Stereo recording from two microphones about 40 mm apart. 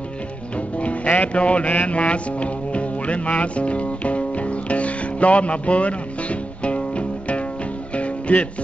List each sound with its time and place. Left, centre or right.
0.6 s music: left